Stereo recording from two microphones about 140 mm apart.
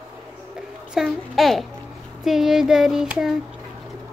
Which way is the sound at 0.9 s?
Centre (ahead or behind).